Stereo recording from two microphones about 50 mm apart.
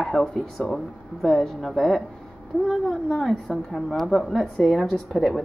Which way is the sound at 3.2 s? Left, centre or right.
Centre.